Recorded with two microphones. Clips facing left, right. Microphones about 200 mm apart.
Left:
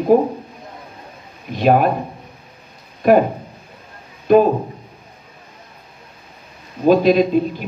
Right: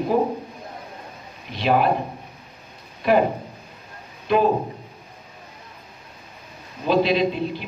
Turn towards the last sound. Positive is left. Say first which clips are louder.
# left 6 dB
turn(degrees=45)  # may be behind; listen again after turning